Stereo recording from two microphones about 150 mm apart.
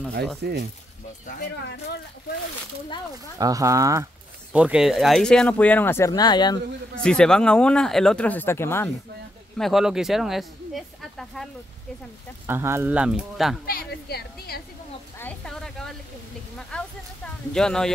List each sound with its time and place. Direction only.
0.4 s speech: 90° right
1.2 s speech: 75° left (ahead or behind)
3.3 s speech: 25° right (ahead or behind)
4.5 s speech: 10° right (ahead or behind); by 6.6 s 30° left (ahead or behind)
7.0 s speech: 5° left (ahead or behind)
9.6 s speech: centre (ahead or behind)
12.4 s speech: 15° right (ahead or behind)
13.7 s a woman's voice: 85° left
15.1 s a sound: 10° left (ahead or behind)